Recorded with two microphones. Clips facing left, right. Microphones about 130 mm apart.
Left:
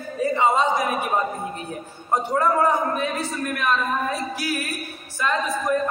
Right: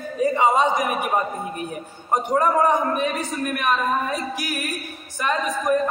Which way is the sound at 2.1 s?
15° right (ahead or behind).